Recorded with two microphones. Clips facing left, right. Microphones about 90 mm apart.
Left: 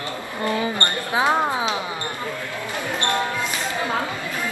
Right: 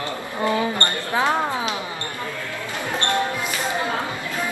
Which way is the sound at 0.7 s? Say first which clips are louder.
Even; 15° left (ahead or behind).